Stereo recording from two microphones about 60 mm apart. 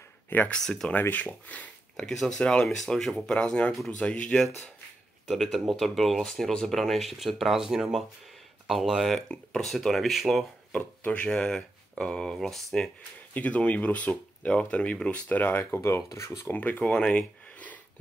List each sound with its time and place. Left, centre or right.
0.5 s speech: centre
0.9 s speech: left
2.0 s speech: centre
5.3 s speech: centre
9.3 s speech: centre
9.7 s speech: centre
10.7 s speech: centre
13.3 s speech: left
15.7 s speech: left
16.4 s speech: left
16.9 s a sound: centre